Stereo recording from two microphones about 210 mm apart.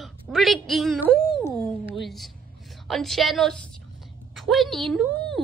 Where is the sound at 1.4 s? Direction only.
5° left (ahead or behind).